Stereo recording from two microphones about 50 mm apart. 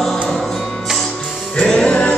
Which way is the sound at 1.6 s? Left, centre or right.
Centre.